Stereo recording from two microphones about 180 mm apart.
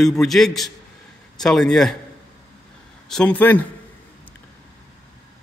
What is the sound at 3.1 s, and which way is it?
Speech, 5° left (ahead or behind).